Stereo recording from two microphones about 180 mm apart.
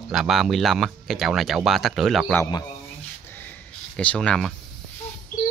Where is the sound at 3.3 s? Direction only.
10° left (ahead or behind).